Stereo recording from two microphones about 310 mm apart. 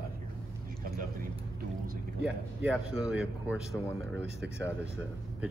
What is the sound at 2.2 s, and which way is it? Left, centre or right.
A man's voice, centre.